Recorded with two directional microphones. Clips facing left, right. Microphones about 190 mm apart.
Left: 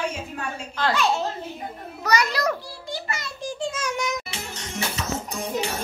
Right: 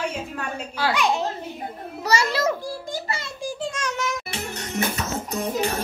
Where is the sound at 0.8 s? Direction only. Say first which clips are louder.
Even; 10° right (ahead or behind).